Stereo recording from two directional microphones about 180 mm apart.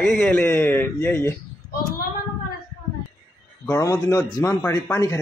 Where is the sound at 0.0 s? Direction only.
5° left (ahead or behind).